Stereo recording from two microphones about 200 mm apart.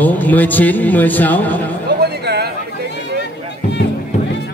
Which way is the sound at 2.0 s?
55° right (ahead or behind).